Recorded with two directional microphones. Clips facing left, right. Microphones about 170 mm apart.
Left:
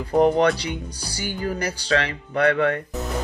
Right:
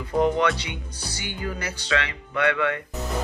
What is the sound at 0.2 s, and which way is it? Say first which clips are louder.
Speech: left 4 dB; 35° left (ahead or behind).